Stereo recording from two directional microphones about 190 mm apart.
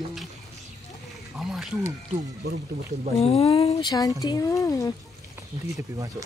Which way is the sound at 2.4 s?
60° right (ahead or behind).